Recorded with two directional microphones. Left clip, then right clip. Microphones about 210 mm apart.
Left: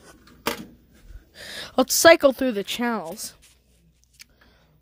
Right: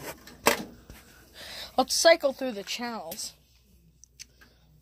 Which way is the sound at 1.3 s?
55° left (ahead or behind).